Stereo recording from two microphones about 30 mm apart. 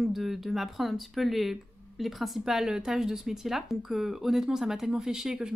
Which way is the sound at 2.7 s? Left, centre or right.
Centre.